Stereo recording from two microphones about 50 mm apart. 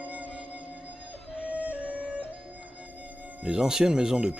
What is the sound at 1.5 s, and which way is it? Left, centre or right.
Music, right.